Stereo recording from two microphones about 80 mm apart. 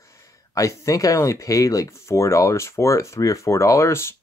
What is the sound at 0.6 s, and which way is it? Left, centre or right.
Speech, left.